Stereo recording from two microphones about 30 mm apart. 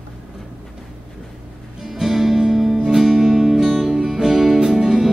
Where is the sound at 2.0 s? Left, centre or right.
Centre.